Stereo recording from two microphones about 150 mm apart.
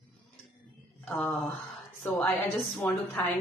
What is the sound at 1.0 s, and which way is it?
Speech, 15° left (ahead or behind).